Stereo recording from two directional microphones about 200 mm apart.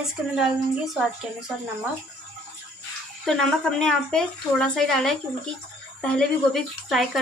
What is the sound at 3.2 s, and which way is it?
Speech, 5° left (ahead or behind).